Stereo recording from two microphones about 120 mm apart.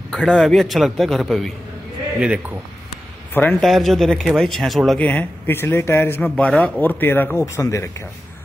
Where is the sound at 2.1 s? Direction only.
10° right (ahead or behind).